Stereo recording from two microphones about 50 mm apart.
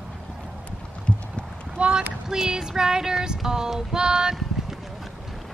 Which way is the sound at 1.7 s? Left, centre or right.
Centre.